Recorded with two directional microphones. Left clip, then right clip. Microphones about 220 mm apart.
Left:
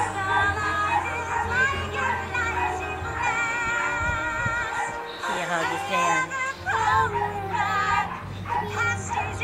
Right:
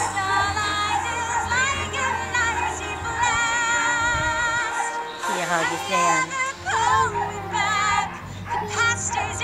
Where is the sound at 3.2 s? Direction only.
40° right (ahead or behind).